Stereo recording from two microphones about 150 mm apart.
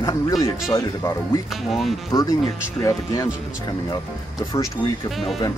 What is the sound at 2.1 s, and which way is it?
Speech, 25° left (ahead or behind).